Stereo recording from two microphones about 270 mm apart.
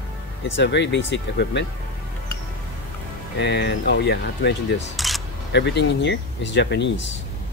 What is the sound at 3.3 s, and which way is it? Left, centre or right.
Speech, left.